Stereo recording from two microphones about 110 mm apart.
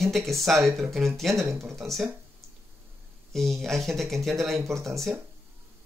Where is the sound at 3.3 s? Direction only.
Centre (ahead or behind).